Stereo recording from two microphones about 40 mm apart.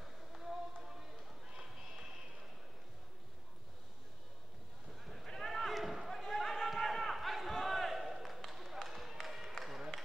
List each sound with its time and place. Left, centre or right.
0.0 s a sound: centre
1.5 s horse: centre
5.0 s basketball bounce: centre
6.7 s battle cry: centre
8.5 s basketball bounce: centre